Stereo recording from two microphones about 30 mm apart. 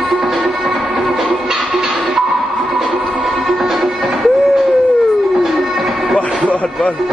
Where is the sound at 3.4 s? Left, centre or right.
Centre.